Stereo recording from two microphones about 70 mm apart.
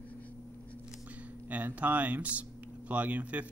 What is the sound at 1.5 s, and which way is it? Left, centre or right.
Speech, right.